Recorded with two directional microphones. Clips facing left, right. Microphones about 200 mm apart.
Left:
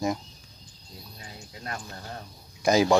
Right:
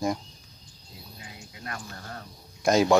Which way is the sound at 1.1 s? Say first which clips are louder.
Left 2 dB; 35° left (ahead or behind).